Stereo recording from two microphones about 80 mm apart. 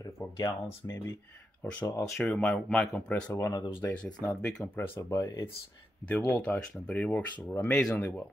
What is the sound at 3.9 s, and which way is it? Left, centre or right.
Speech, centre.